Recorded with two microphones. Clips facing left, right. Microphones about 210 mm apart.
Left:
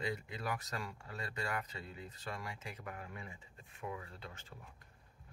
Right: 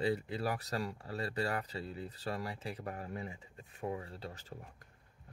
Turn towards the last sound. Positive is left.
turn(degrees=-35)  # may be behind; listen again after turning